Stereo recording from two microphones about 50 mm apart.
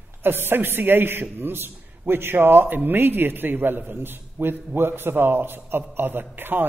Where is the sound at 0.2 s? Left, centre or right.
Right.